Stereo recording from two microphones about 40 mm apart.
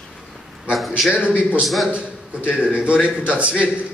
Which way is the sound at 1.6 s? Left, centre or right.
Centre.